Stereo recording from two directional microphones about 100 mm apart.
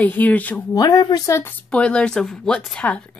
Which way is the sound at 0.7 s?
45° left (ahead or behind).